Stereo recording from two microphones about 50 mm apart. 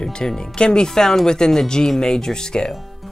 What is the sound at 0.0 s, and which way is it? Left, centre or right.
Speech, centre.